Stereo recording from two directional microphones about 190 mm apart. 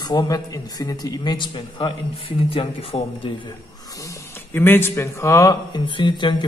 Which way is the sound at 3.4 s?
15° left (ahead or behind).